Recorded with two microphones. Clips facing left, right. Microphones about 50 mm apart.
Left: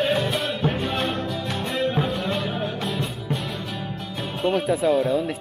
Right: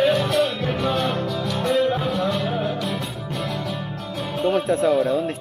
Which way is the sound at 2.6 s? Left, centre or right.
Centre.